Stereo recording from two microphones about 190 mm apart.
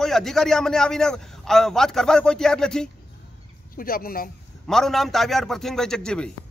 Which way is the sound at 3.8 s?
50° left (ahead or behind).